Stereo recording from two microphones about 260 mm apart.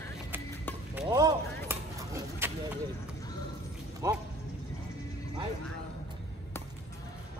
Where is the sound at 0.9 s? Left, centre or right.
Centre.